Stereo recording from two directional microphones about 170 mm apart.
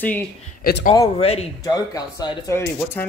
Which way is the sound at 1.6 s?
25° left (ahead or behind).